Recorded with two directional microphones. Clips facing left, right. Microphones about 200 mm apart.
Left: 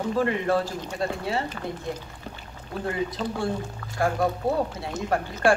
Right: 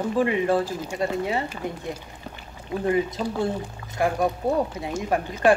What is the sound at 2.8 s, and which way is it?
Speech, 20° right (ahead or behind).